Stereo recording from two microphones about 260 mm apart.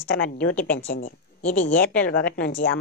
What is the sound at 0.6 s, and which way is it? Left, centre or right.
Speech, left.